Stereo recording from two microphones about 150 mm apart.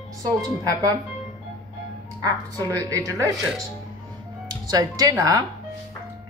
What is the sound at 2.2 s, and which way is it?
Speech, 25° right (ahead or behind).